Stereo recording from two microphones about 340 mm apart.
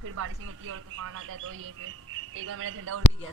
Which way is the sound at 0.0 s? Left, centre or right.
Right.